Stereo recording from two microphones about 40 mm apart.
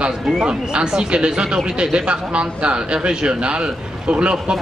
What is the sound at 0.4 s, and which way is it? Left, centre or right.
A man's voice, right.